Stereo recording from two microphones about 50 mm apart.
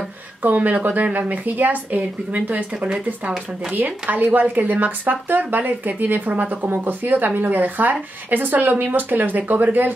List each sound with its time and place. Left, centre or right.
0.4 s speech: right
4.0 s speech: right